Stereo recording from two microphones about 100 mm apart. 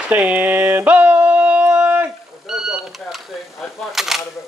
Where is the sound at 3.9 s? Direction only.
5° right (ahead or behind).